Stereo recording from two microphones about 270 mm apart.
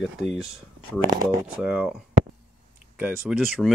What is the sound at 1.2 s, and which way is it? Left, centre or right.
Speech, right.